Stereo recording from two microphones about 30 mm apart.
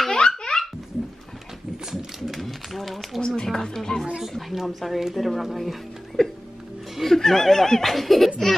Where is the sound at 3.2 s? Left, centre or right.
Left.